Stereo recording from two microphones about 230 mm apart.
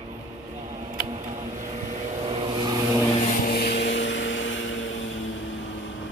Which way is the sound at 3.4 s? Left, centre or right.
Left.